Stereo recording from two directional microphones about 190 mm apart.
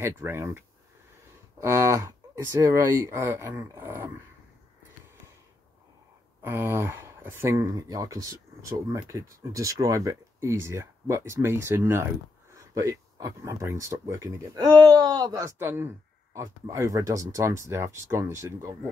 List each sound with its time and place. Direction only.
0.0 s speech: 15° right (ahead or behind)
6.4 s speech: 15° right (ahead or behind)